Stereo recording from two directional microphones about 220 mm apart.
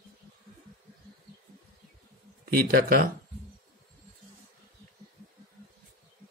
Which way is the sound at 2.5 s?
40° right (ahead or behind).